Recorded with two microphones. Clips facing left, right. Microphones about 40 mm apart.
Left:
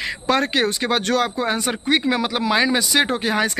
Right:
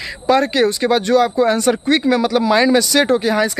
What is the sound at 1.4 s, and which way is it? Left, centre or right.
Speech, left.